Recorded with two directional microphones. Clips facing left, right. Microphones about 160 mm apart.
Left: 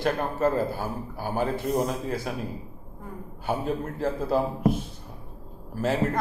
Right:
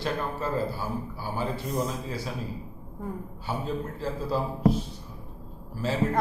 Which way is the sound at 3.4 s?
55° left (ahead or behind).